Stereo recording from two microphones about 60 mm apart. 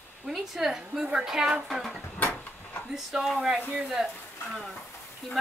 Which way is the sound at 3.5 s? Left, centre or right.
Right.